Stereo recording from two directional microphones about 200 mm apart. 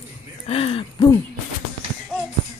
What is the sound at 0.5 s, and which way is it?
Speech, 30° left (ahead or behind).